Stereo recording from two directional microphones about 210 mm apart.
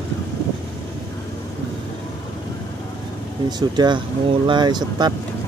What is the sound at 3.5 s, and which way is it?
Speech, 20° right (ahead or behind).